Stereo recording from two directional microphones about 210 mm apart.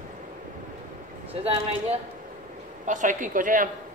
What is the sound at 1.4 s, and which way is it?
A woman's voice, 30° right (ahead or behind).